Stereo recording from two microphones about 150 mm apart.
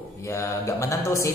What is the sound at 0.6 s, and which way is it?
Speech, 20° left (ahead or behind).